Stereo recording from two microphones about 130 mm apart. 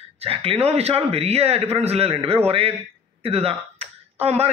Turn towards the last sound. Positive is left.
turn(degrees=-50)  # may be behind; listen again after turning